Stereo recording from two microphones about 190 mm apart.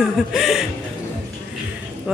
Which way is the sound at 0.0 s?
Centre (ahead or behind).